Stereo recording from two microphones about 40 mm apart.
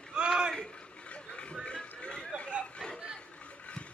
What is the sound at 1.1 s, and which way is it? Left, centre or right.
Chatter, left.